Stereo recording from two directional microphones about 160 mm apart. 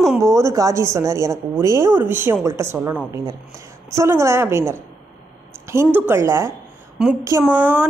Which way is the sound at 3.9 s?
15° right (ahead or behind).